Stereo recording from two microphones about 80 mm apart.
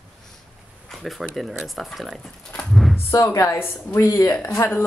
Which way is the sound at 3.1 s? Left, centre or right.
Left.